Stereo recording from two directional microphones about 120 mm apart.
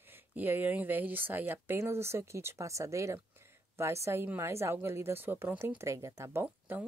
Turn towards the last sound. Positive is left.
turn(degrees=-15)  # may be behind; listen again after turning